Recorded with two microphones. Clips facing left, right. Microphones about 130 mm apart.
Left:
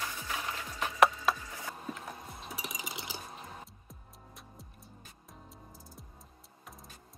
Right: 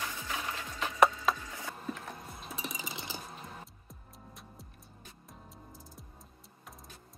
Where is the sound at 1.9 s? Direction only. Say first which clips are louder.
Right 1 dB; 5° left (ahead or behind).